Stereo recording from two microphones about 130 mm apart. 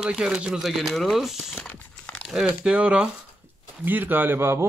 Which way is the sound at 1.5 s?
10° left (ahead or behind).